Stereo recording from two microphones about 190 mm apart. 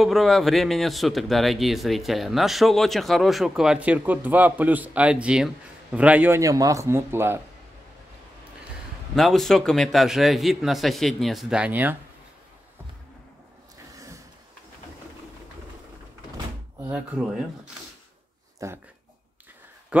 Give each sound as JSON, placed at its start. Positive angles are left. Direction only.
{"t": 0.0, "sound": "a man's voice", "side_deg": 0}
{"t": 9.1, "sound": "a man's voice", "side_deg": 0}
{"t": 13.9, "sound": "vehicle", "side_deg": -15}
{"t": 16.8, "sound": "speech", "side_deg": -5}
{"t": 18.6, "sound": "speech", "side_deg": -15}
{"t": 19.9, "sound": "speech", "side_deg": -5}